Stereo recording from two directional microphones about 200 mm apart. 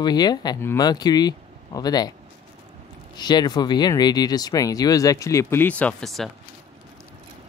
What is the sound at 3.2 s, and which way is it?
Speech, 20° left (ahead or behind).